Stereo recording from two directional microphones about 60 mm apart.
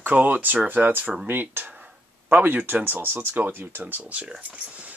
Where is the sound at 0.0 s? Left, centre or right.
Right.